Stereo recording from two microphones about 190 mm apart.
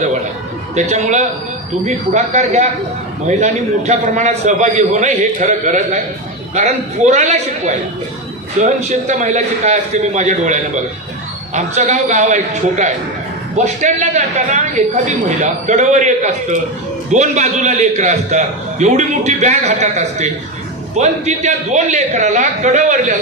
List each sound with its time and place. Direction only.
0.7 s a man's voice: 40° right (ahead or behind)